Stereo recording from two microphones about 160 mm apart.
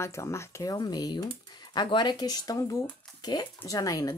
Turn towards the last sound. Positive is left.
turn(degrees=20)  # may be behind; listen again after turning